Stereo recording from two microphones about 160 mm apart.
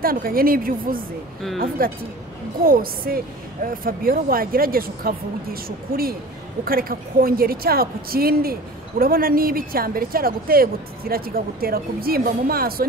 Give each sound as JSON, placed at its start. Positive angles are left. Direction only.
{"t": 0.0, "sound": "speech", "side_deg": -65}